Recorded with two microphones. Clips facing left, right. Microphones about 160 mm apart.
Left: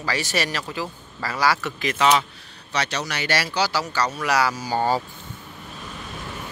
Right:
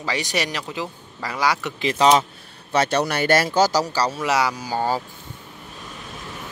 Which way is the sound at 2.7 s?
55° right (ahead or behind).